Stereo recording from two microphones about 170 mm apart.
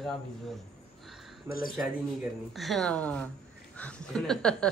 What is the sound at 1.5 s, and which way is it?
Speech, 15° right (ahead or behind).